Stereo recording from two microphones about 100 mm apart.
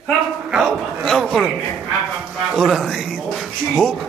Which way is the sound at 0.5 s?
Centre (ahead or behind).